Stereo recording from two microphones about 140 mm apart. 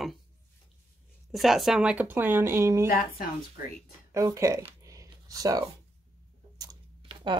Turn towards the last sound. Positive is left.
turn(degrees=-35)  # may be behind; listen again after turning